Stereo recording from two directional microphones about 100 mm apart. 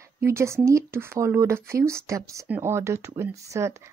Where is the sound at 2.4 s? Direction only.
20° right (ahead or behind).